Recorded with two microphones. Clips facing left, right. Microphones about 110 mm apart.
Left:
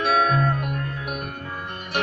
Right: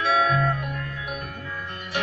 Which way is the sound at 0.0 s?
55° left (ahead or behind).